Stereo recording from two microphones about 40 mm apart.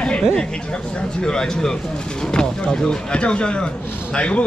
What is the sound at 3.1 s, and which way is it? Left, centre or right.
A man's voice, left.